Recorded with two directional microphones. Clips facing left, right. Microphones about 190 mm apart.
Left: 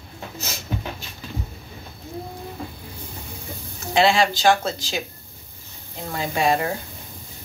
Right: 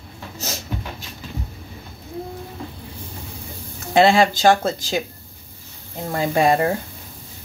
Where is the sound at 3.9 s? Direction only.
50° right (ahead or behind).